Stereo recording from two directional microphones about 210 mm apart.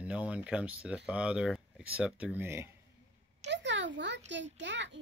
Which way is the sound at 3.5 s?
60° right (ahead or behind).